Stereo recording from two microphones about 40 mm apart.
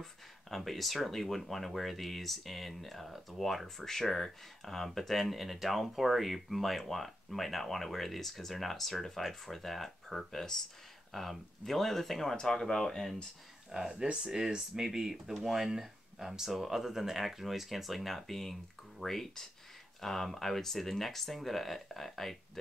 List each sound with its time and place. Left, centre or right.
0.0 s speech: centre
12.4 s speech: centre
13.7 s speech: centre